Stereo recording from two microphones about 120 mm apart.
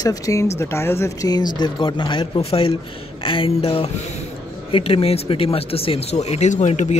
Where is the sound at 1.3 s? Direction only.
35° left (ahead or behind); by 7.0 s 70° left (ahead or behind).